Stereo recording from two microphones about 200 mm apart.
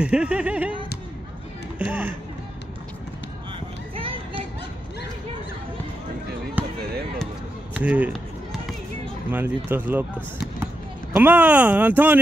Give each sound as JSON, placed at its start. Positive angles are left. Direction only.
{"t": 0.0, "sound": "a sound", "side_deg": -5}
{"t": 1.9, "sound": "speech", "side_deg": -10}
{"t": 3.5, "sound": "a sound", "side_deg": -25}
{"t": 6.6, "sound": "basketball bounce", "side_deg": -10}
{"t": 7.7, "sound": "run", "side_deg": -5}
{"t": 9.3, "sound": "speech", "side_deg": -10}